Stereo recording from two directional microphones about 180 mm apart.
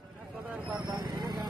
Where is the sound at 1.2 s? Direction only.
25° right (ahead or behind).